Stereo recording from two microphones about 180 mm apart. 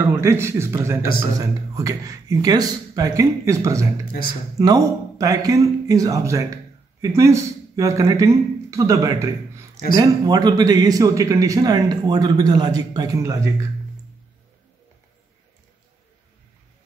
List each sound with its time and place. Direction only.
0.0 s a man's voice: 15° right (ahead or behind)